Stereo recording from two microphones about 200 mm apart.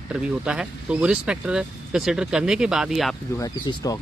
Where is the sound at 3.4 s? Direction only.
20° left (ahead or behind).